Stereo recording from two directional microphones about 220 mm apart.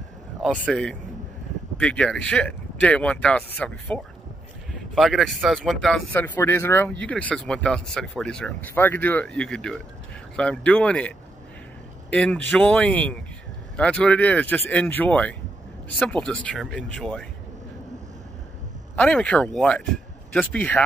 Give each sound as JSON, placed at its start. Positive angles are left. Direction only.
{"t": 0.4, "sound": "speech", "side_deg": 0}
{"t": 18.9, "sound": "speech", "side_deg": 5}